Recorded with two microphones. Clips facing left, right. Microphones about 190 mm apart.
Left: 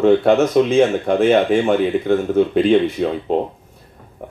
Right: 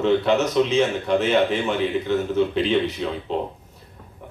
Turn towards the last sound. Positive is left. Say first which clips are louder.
# left 7 dB
turn(degrees=50)  # may be behind; listen again after turning